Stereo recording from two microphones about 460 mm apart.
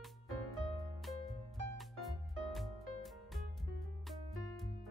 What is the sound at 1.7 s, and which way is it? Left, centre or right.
Music, centre.